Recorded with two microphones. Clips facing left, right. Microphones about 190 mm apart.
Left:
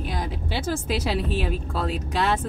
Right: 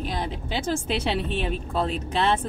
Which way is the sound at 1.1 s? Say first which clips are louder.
Left 1 dB; 5° left (ahead or behind).